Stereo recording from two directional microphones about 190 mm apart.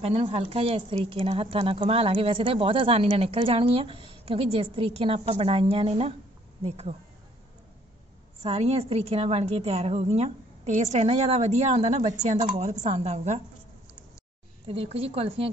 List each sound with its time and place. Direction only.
0.0 s a woman's voice: 30° right (ahead or behind)
8.4 s a woman's voice: 30° right (ahead or behind)
14.7 s a woman's voice: 30° right (ahead or behind)